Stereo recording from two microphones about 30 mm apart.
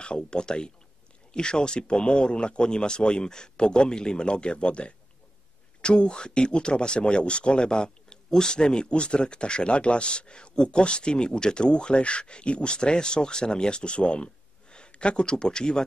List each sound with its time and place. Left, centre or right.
0.0 s speech: left
5.9 s speech: left